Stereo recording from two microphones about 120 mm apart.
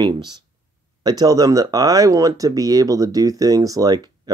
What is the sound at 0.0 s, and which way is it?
Speech, 35° right (ahead or behind).